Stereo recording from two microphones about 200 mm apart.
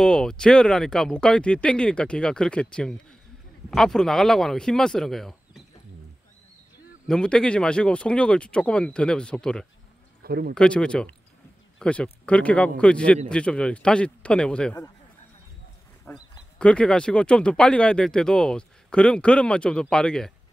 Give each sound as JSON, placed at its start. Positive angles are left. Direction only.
{"t": 0.0, "sound": "speech", "side_deg": 5}
{"t": 7.1, "sound": "speech", "side_deg": 5}
{"t": 10.2, "sound": "speech", "side_deg": -50}
{"t": 10.5, "sound": "speech", "side_deg": 5}
{"t": 16.1, "sound": "speech", "side_deg": 5}